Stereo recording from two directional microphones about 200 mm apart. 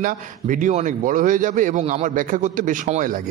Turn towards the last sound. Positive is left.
turn(degrees=-40)  # may be behind; listen again after turning